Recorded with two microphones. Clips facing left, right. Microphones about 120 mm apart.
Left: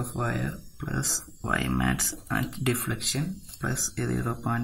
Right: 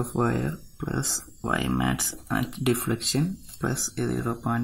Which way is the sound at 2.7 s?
25° right (ahead or behind).